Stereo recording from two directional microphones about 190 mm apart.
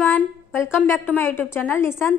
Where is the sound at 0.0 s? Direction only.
10° left (ahead or behind).